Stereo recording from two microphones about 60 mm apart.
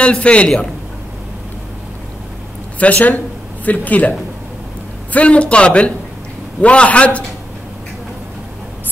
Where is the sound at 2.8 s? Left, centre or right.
Left.